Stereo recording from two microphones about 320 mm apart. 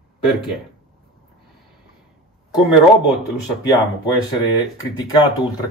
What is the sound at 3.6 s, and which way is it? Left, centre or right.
A man's voice, centre.